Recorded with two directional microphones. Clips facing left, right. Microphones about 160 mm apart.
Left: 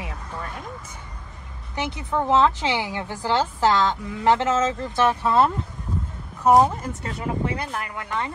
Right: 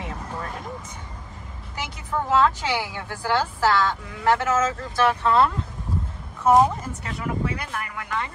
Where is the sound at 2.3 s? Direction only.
20° left (ahead or behind).